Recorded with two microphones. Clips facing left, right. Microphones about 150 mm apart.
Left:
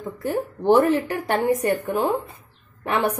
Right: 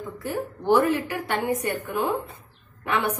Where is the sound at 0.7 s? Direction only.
35° left (ahead or behind).